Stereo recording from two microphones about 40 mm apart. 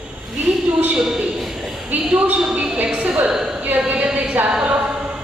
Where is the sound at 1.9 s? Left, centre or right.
Right.